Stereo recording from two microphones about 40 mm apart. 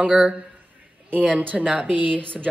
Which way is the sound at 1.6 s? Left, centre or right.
Right.